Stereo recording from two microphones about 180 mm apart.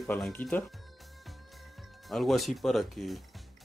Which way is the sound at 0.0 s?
5° left (ahead or behind).